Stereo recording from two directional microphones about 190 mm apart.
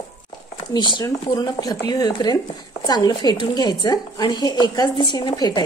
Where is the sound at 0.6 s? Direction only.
25° left (ahead or behind).